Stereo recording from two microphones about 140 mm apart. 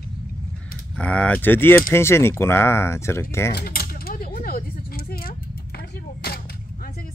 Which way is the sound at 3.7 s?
90° left.